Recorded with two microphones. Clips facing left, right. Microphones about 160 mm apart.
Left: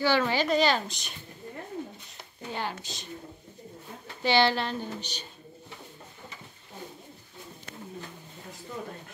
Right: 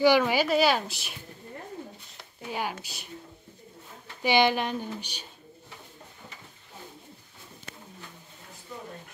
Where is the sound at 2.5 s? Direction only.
10° right (ahead or behind).